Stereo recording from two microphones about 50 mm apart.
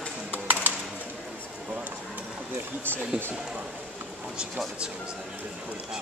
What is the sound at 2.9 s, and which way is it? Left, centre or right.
Speech, right.